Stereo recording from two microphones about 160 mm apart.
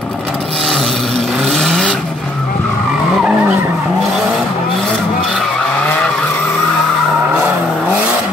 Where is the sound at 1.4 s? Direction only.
5° left (ahead or behind).